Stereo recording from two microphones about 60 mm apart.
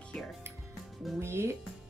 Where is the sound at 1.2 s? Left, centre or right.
Right.